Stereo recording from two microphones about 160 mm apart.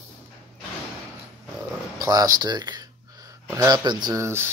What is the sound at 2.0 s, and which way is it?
Speech, 25° right (ahead or behind).